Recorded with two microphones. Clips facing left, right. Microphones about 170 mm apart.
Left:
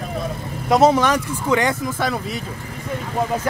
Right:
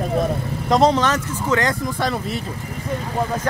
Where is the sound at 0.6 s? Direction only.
10° left (ahead or behind).